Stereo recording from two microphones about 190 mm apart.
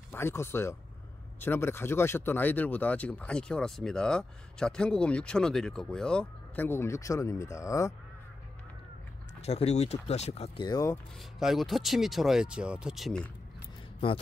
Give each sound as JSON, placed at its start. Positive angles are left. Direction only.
{"t": 0.1, "sound": "speech", "side_deg": 15}
{"t": 9.4, "sound": "speech", "side_deg": 35}
{"t": 11.3, "sound": "speech", "side_deg": 0}